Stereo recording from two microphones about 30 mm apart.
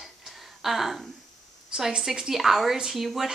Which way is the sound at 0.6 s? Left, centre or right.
Centre.